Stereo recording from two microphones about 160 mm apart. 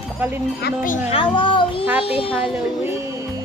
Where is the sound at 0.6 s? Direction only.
80° left.